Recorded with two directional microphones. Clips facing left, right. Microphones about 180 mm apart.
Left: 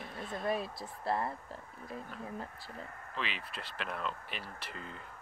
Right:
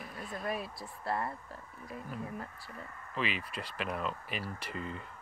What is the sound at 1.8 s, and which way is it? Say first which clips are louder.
Speech: right 2 dB; 5° right (ahead or behind).